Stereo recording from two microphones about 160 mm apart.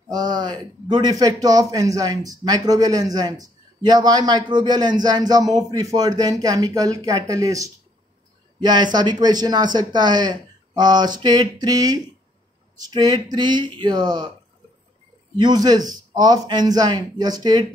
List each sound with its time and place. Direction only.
0.1 s a man's voice: 25° right (ahead or behind)
15.3 s a man's voice: 25° right (ahead or behind)